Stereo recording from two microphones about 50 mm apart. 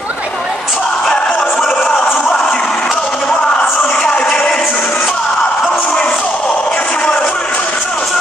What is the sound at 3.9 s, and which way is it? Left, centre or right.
Music, centre.